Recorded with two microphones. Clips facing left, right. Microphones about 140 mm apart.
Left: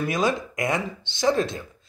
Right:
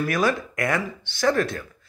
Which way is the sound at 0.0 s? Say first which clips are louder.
Right 1 dB; 20° left (ahead or behind).